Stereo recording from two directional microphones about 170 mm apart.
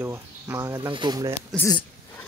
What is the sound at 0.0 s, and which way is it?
Speech, 15° right (ahead or behind).